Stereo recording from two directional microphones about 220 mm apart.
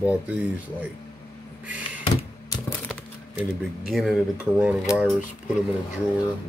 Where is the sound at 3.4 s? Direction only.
Centre (ahead or behind).